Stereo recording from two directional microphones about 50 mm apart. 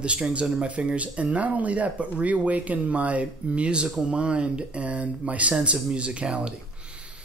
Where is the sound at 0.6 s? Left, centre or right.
Right.